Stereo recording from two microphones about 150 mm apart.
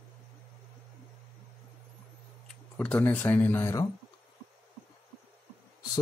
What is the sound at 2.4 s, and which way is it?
Speech, 10° left (ahead or behind).